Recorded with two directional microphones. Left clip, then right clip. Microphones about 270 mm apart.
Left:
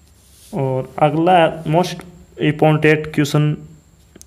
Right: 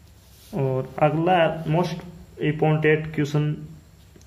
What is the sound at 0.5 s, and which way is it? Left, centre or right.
Speech, centre.